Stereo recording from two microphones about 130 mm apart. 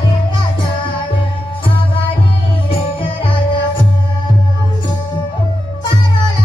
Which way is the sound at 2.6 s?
40° left (ahead or behind).